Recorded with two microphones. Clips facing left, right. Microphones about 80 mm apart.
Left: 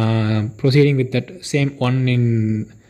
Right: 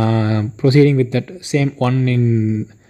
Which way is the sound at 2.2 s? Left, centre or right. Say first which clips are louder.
Right 2 dB; centre.